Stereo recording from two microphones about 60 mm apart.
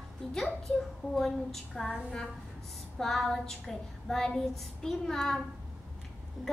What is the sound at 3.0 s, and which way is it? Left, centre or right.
Child singing, centre.